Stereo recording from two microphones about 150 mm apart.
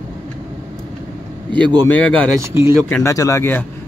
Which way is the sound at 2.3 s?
20° right (ahead or behind).